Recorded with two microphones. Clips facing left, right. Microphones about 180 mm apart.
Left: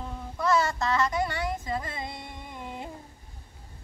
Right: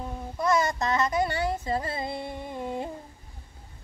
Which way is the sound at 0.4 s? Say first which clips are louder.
Right 1 dB; 15° right (ahead or behind).